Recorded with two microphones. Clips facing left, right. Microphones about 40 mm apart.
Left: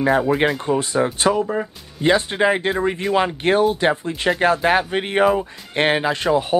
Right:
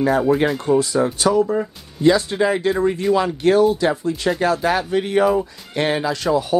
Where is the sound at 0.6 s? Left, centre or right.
Left.